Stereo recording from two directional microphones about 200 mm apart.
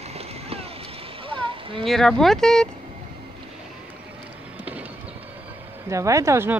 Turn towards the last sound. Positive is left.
turn(degrees=-15)  # may be behind; listen again after turning